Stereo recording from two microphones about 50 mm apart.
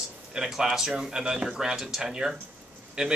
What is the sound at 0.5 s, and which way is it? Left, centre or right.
Speech, centre.